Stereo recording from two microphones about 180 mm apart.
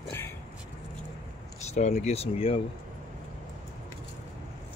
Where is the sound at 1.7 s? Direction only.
40° left (ahead or behind).